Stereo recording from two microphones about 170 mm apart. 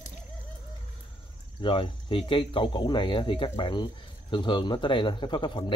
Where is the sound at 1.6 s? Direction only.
30° left (ahead or behind).